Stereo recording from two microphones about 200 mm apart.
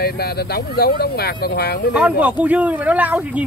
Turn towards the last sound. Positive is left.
turn(degrees=-5)  # may be behind; listen again after turning